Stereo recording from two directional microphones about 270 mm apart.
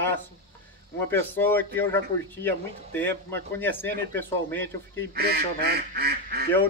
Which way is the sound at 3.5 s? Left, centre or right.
Centre.